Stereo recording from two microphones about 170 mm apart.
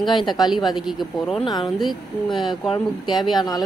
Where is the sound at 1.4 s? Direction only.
25° left (ahead or behind).